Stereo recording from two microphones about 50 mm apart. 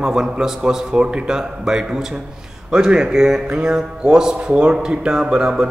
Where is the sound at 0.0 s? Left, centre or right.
Centre.